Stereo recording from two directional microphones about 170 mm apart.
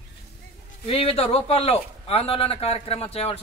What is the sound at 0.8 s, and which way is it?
A man's voice, 35° left (ahead or behind).